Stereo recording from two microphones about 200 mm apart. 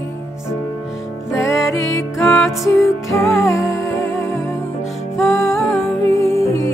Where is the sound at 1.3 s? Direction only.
15° left (ahead or behind).